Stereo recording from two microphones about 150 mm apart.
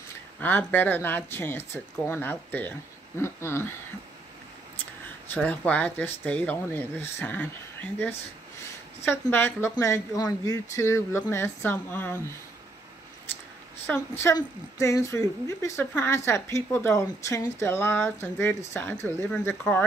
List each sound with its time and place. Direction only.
0.4 s a woman's voice: 10° left (ahead or behind)
5.3 s a woman's voice: 10° left (ahead or behind)
13.8 s a woman's voice: 15° left (ahead or behind)